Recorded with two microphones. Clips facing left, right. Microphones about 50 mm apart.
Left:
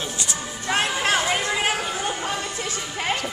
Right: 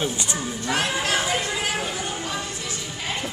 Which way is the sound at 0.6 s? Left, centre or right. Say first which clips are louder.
Left 3 dB; left.